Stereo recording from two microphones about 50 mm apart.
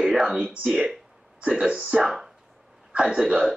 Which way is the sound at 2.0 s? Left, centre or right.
Centre.